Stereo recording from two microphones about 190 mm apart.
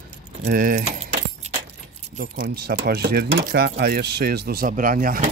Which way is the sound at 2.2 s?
50° right (ahead or behind).